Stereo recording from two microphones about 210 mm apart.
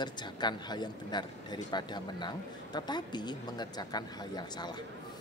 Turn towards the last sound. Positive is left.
turn(degrees=20)  # may be behind; listen again after turning